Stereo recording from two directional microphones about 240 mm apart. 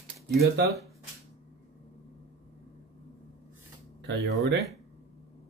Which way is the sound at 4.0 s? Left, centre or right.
Right.